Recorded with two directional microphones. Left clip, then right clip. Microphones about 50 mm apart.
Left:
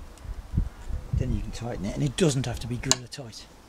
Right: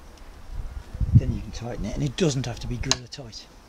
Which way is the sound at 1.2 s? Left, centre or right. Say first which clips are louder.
Even; left.